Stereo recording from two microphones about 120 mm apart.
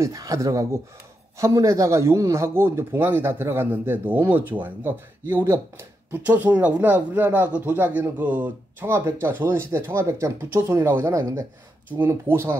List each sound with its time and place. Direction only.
0.0 s speech: 30° right (ahead or behind)